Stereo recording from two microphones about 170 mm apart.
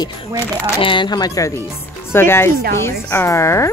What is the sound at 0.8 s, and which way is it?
A woman's voice, 30° left (ahead or behind).